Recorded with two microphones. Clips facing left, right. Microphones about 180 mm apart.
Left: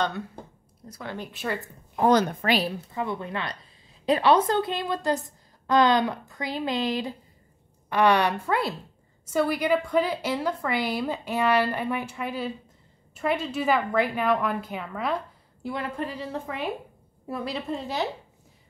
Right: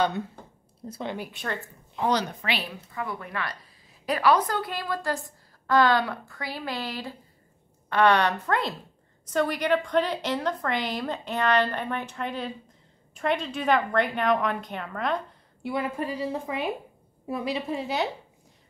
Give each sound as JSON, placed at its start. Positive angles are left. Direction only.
{"t": 0.8, "sound": "speech", "side_deg": -25}
{"t": 1.3, "sound": "a woman's voice", "side_deg": 5}
{"t": 2.0, "sound": "speech", "side_deg": 50}
{"t": 2.9, "sound": "a woman's voice", "side_deg": 25}
{"t": 15.7, "sound": "a woman's voice", "side_deg": -10}